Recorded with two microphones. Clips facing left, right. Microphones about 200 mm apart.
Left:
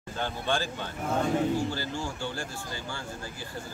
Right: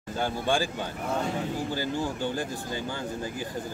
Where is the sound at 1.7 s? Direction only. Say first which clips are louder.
Right 4 dB; 15° right (ahead or behind).